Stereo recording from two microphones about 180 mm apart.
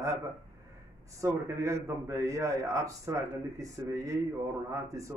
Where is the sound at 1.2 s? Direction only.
15° right (ahead or behind).